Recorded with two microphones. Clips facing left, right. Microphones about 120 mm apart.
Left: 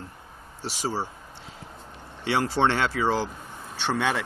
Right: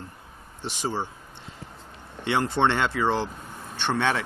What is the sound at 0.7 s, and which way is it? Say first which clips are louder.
Speech: even; 10° left (ahead or behind).